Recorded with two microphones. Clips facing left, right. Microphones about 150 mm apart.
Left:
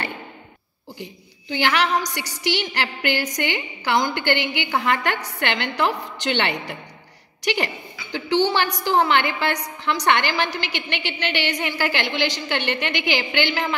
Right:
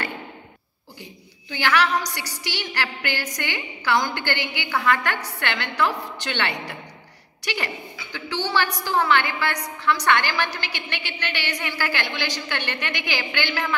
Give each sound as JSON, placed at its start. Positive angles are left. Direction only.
{"t": 1.5, "sound": "a woman's voice", "side_deg": 20}